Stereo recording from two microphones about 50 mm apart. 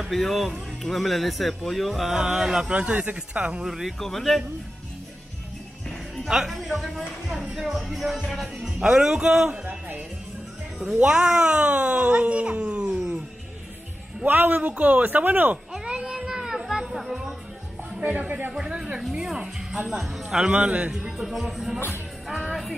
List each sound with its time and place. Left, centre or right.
0.0 s speech: centre
2.7 s speech: right
3.6 s speech: centre
4.0 s speech: centre
6.2 s speech: centre
6.5 s speech: centre
9.5 s music: right
11.0 s speech: right
14.2 s speech: right
15.7 s child singing: centre
16.9 s music: centre
18.0 s speech: right
18.5 s speech: centre
21.0 s speech: centre